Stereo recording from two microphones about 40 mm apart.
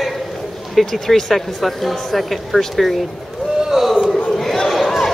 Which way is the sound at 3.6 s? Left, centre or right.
Centre.